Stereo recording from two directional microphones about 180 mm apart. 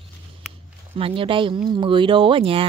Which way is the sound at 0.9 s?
30° right (ahead or behind).